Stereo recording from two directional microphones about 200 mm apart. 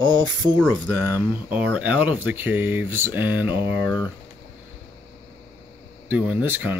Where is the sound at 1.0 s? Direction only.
10° right (ahead or behind).